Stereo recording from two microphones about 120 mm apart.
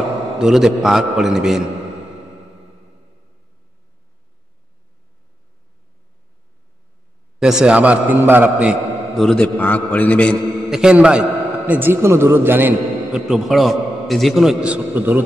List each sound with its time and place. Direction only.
0.4 s a man's voice: 5° right (ahead or behind)
7.3 s a man's voice: 5° right (ahead or behind)
9.1 s a man's voice: 5° left (ahead or behind)
10.6 s a man's voice: 5° right (ahead or behind)
13.3 s a man's voice: centre (ahead or behind)